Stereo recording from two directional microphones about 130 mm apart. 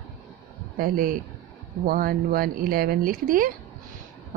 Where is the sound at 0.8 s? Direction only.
90° right.